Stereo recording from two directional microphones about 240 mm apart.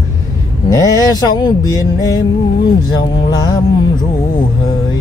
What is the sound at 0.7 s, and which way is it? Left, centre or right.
Speech, centre.